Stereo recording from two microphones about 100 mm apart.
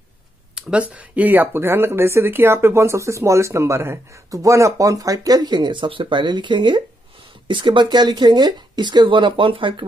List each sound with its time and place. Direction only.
0.6 s speech: 10° right (ahead or behind); by 9.8 s 55° right (ahead or behind)